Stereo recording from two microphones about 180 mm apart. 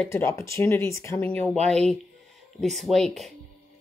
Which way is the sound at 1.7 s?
5° left (ahead or behind).